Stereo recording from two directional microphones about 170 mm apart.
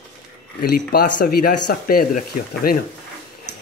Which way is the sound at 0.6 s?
65° left (ahead or behind).